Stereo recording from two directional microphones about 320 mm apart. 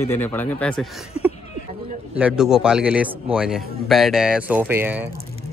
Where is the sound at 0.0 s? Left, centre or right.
Centre.